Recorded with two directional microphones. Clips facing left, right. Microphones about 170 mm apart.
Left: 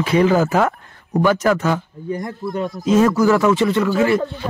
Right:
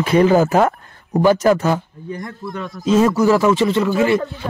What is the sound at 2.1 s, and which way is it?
Speech, 25° left (ahead or behind).